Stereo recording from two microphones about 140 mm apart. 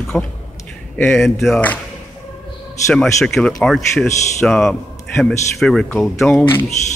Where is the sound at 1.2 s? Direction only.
Centre (ahead or behind).